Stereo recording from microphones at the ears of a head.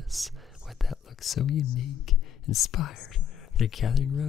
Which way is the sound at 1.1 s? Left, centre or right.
Left.